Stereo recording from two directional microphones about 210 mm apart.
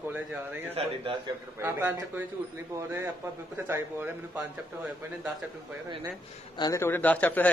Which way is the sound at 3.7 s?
10° right (ahead or behind).